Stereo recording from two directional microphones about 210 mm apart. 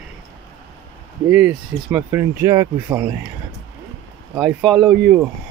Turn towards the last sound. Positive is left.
turn(degrees=-5)  # may be behind; listen again after turning